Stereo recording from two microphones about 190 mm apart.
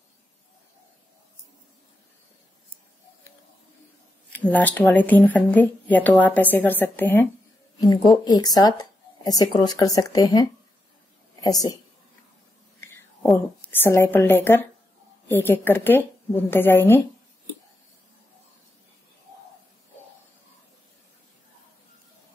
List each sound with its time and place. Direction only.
4.3 s a woman's voice: 10° left (ahead or behind)
7.8 s speech: 20° left (ahead or behind)
11.4 s speech: 20° left (ahead or behind)
12.8 s a sound: 15° left (ahead or behind)
13.7 s a woman's voice: 10° left (ahead or behind)